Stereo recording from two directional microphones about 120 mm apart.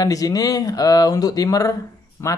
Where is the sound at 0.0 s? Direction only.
30° left (ahead or behind).